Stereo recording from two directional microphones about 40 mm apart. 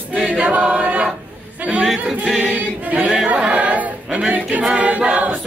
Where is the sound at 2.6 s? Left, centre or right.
Right.